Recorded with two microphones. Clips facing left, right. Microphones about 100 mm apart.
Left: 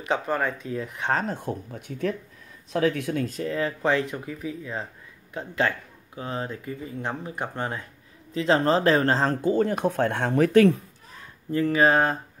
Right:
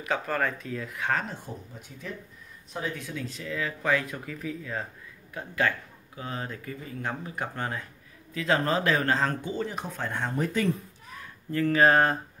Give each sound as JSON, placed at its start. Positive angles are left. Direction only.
{"t": 0.0, "sound": "speech", "side_deg": 25}
{"t": 1.3, "sound": "speech", "side_deg": 60}
{"t": 2.7, "sound": "speech", "side_deg": 80}
{"t": 11.1, "sound": "a sound", "side_deg": 25}
{"t": 11.8, "sound": "speech", "side_deg": 5}